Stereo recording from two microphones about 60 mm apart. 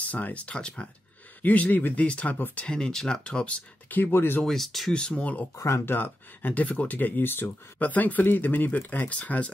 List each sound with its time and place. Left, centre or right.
0.0 s speech: left
2.0 s speech: left
2.3 s speech: left
2.6 s speech: centre
4.0 s speech: left
4.4 s speech: centre
4.9 s speech: centre